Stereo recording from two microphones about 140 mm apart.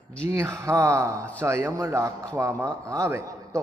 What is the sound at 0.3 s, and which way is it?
A man's voice, 20° right (ahead or behind).